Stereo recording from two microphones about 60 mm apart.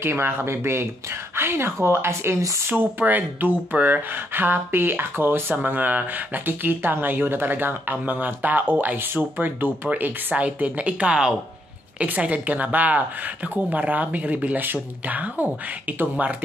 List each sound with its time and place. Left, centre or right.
0.0 s speech: right
2.6 s speech: right